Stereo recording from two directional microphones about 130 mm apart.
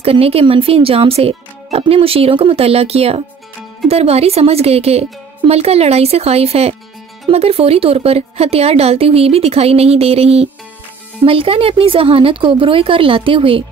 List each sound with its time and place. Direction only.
0.0 s a woman's voice: 50° right (ahead or behind)